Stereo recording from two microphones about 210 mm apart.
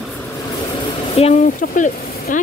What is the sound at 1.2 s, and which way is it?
Speech, 35° left (ahead or behind).